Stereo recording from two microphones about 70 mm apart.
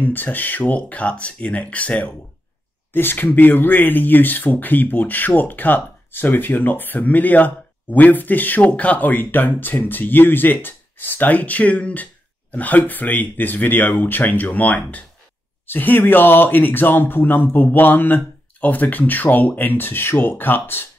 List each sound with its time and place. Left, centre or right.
0.0 s speech: left